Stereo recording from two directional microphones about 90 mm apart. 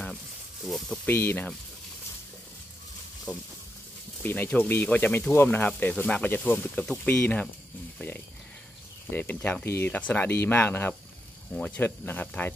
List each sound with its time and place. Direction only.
0.7 s speech: centre (ahead or behind)
1.0 s speech: 25° left (ahead or behind)
3.3 s speech: 10° right (ahead or behind)
4.2 s speech: 20° left (ahead or behind)
8.0 s speech: 20° left (ahead or behind)